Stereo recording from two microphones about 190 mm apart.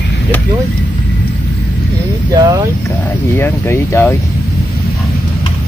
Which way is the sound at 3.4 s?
10° left (ahead or behind).